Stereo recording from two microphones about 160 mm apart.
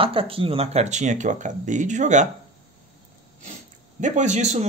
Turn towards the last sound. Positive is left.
turn(degrees=-45)  # may be behind; listen again after turning